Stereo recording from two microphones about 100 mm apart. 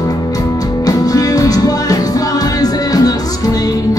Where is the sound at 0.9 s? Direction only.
40° left (ahead or behind).